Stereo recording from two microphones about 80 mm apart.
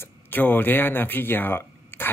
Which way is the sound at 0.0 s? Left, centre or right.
Left.